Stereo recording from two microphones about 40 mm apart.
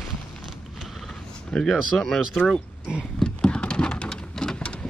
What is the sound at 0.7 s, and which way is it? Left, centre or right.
Vehicle, centre.